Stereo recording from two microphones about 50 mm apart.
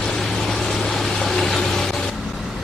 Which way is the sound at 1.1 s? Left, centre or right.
Centre.